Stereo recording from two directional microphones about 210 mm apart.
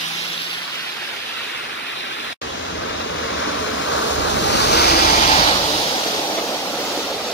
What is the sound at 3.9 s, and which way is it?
Waves, 60° left (ahead or behind).